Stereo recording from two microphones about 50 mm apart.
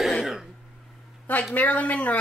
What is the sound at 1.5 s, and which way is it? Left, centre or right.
Speech, left.